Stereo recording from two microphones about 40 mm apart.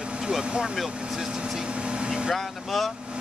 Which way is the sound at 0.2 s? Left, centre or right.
Centre.